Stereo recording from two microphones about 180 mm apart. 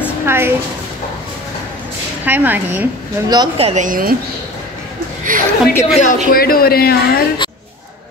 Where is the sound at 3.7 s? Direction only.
45° right (ahead or behind).